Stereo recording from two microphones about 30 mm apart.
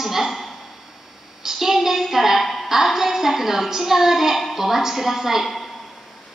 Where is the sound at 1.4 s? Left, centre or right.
Centre.